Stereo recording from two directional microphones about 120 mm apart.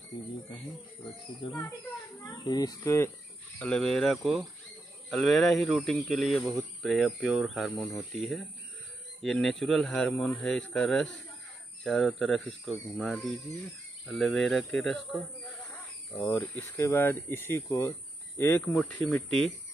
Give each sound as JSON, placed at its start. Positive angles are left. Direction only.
{"t": 1.4, "sound": "a child's voice", "side_deg": 50}
{"t": 2.4, "sound": "speech", "side_deg": 35}
{"t": 2.8, "sound": "speech", "side_deg": 20}
{"t": 3.5, "sound": "speech", "side_deg": 10}
{"t": 9.2, "sound": "speech", "side_deg": 5}
{"t": 16.3, "sound": "speech", "side_deg": 15}